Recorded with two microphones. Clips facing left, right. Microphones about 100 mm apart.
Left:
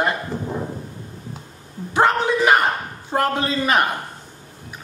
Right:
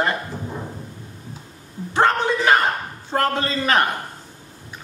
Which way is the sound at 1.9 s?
15° left (ahead or behind).